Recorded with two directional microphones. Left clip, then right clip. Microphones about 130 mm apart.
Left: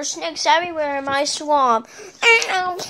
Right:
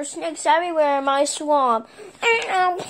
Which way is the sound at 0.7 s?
25° right (ahead or behind).